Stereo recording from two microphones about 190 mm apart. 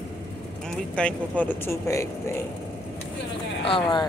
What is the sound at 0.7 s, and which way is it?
Speech, 5° left (ahead or behind).